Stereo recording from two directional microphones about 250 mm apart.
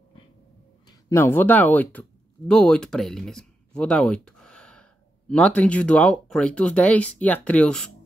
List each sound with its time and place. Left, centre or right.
1.0 s speech: centre